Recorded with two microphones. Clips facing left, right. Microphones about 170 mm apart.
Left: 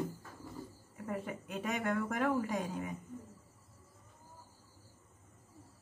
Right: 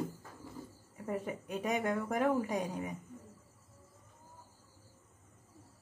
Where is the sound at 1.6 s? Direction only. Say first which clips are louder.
Right 1 dB; 15° right (ahead or behind).